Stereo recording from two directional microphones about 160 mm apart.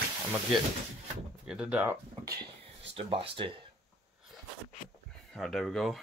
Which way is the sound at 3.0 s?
35° right (ahead or behind).